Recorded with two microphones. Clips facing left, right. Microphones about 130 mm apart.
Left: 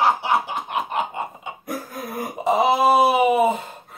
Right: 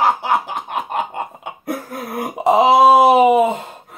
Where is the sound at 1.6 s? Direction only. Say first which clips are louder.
Right 5 dB; 70° right (ahead or behind); by 3.4 s 90° right.